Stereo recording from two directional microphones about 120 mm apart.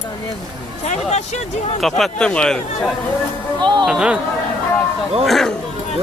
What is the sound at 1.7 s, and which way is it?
Speech, centre (ahead or behind).